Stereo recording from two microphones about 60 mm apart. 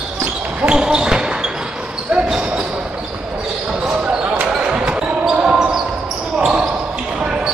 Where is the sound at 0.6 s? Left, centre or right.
Centre.